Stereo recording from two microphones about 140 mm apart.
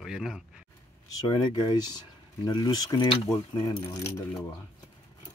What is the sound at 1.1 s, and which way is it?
Speech, 25° left (ahead or behind).